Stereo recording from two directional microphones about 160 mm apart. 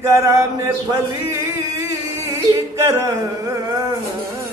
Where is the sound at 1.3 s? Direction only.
20° right (ahead or behind).